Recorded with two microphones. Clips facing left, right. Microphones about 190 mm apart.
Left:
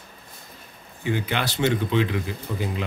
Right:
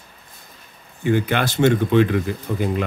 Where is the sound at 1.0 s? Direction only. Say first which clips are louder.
Right 6 dB; 50° right (ahead or behind).